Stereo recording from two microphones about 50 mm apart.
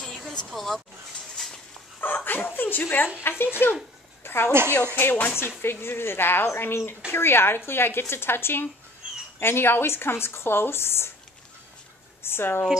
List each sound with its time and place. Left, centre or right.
0.0 s a sound: centre
0.5 s speech: centre
1.3 s a sound: centre
2.0 s speech: left
3.2 s speech: left
4.2 s a sound: left
4.5 s speech: right
4.9 s speech: left
5.6 s speech: left
12.3 s speech: left